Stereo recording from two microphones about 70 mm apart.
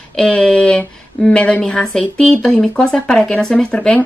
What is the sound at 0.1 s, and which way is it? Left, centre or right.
Speech, centre.